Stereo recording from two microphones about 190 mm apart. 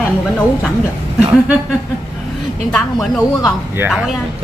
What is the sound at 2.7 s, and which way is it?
Speech, 5° left (ahead or behind).